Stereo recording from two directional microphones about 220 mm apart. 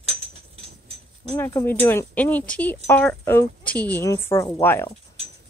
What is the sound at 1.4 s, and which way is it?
Speech, 10° left (ahead or behind).